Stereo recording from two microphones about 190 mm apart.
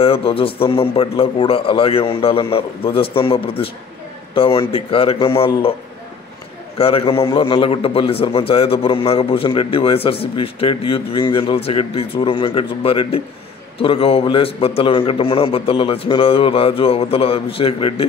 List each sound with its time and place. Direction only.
0.0 s a man's voice: 30° left (ahead or behind)
6.8 s a man's voice: 30° left (ahead or behind)